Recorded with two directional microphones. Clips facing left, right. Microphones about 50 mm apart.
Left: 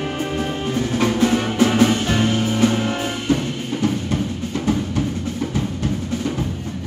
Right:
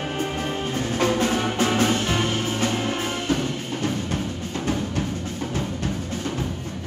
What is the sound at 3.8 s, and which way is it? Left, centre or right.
Music, left.